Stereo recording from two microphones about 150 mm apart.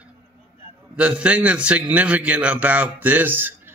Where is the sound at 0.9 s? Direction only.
10° right (ahead or behind).